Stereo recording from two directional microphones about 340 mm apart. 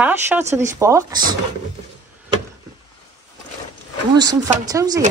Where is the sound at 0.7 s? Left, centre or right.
Centre.